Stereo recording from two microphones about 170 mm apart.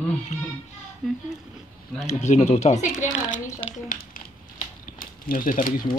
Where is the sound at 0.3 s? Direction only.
40° left (ahead or behind).